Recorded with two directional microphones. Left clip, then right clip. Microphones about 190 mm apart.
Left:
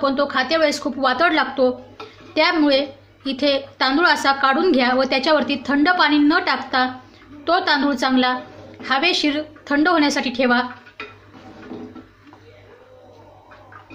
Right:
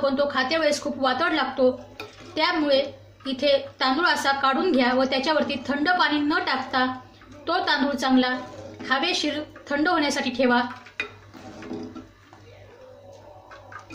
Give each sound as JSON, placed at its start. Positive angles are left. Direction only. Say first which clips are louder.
{"t": 0.0, "sound": "a woman's voice", "louder": "left 3 dB", "side_deg": 30}